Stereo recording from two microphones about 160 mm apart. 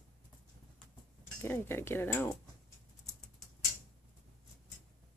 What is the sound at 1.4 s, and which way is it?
Speech, 15° left (ahead or behind).